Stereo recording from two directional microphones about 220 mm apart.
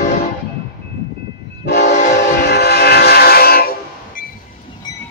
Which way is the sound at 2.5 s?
45° left (ahead or behind).